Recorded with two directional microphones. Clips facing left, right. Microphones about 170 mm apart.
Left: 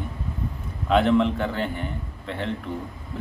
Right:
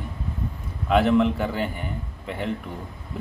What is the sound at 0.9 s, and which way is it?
A man's voice, 5° right (ahead or behind).